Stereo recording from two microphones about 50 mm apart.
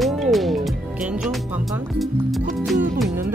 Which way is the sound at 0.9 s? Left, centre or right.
Centre.